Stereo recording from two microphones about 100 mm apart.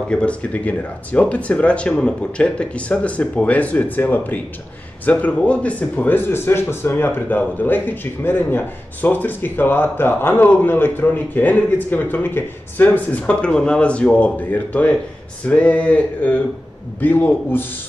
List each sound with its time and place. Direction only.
0.1 s speech: 10° left (ahead or behind)